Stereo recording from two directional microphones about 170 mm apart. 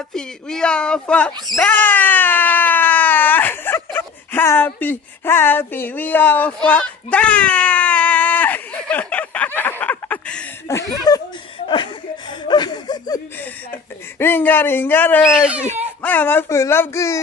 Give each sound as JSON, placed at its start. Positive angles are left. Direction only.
{"t": 0.1, "sound": "screaming", "side_deg": 5}
{"t": 10.8, "sound": "speech", "side_deg": 20}
{"t": 11.6, "sound": "chuckle", "side_deg": 30}
{"t": 12.4, "sound": "a sound", "side_deg": 25}
{"t": 14.1, "sound": "speech", "side_deg": 15}
{"t": 15.3, "sound": "speech", "side_deg": -5}
{"t": 16.0, "sound": "speech", "side_deg": 10}